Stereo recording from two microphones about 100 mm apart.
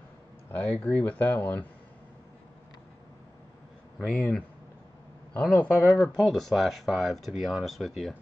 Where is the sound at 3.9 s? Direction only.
10° left (ahead or behind).